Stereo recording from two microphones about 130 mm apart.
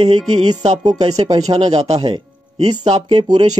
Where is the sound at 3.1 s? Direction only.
35° right (ahead or behind).